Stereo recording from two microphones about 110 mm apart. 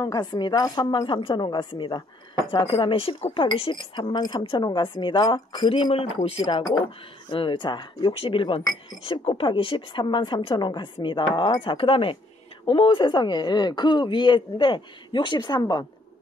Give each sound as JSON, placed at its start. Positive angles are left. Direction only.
{"t": 0.0, "sound": "a woman's voice", "side_deg": 40}
{"t": 0.9, "sound": "speech", "side_deg": 50}
{"t": 7.2, "sound": "speech", "side_deg": 50}